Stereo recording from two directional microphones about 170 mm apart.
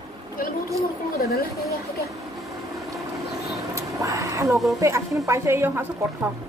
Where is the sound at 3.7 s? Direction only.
20° right (ahead or behind).